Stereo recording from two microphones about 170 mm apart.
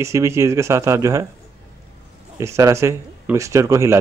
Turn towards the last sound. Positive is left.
turn(degrees=-15)  # may be behind; listen again after turning